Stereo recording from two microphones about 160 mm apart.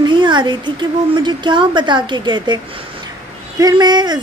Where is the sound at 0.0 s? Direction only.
30° right (ahead or behind).